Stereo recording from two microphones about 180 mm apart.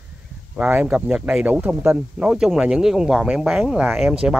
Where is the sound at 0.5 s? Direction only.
5° right (ahead or behind).